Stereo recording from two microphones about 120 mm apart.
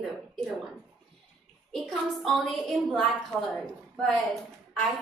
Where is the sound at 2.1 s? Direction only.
Centre (ahead or behind).